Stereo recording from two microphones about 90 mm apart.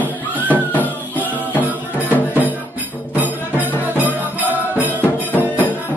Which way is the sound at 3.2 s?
20° right (ahead or behind).